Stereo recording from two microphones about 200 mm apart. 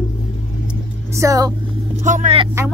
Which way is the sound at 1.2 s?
15° right (ahead or behind).